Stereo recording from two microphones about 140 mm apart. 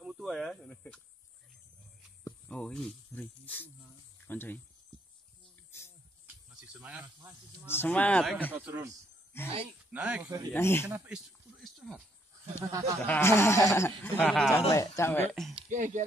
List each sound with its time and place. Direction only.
0.0 s a sound: 5° right (ahead or behind)
2.4 s speech: 5° left (ahead or behind)
6.2 s a sound: 10° right (ahead or behind)
7.0 s speech: 25° right (ahead or behind)
7.6 s speech: 15° left (ahead or behind)
8.5 s speech: 15° right (ahead or behind)
9.3 s speech: 15° left (ahead or behind)
9.8 s speech: 10° right (ahead or behind)
10.5 s speech: 15° left (ahead or behind)
11.1 s a sound: centre (ahead or behind)
12.5 s speech: 20° right (ahead or behind)
13.0 s speech: 15° left (ahead or behind)
15.7 s speech: 65° right (ahead or behind)